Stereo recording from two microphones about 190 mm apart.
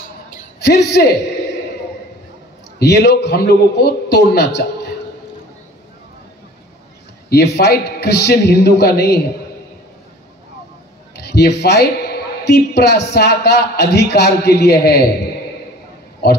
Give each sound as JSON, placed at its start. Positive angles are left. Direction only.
{"t": 0.6, "sound": "a man's voice", "side_deg": 60}
{"t": 2.8, "sound": "a man's voice", "side_deg": 60}
{"t": 7.2, "sound": "a man's voice", "side_deg": 55}
{"t": 11.1, "sound": "a man's voice", "side_deg": 60}
{"t": 16.2, "sound": "a man's voice", "side_deg": 55}